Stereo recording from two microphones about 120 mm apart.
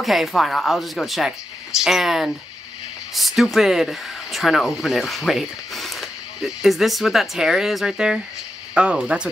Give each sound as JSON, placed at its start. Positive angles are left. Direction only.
{"t": 0.0, "sound": "speech", "side_deg": 0}